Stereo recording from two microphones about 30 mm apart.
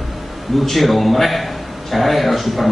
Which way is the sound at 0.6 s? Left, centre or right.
Centre.